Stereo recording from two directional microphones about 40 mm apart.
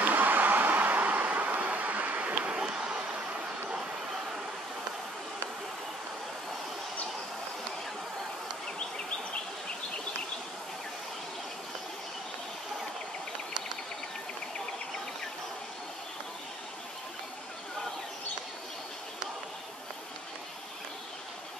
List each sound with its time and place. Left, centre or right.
0.0 s vehicle: right